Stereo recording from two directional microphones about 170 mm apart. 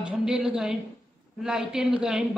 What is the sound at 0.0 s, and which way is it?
A woman's voice, 5° right (ahead or behind).